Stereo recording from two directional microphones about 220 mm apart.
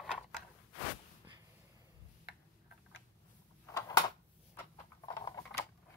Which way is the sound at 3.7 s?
15° left (ahead or behind).